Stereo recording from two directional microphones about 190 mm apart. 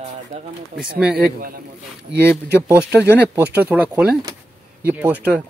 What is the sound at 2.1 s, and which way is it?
Speech, 60° right (ahead or behind).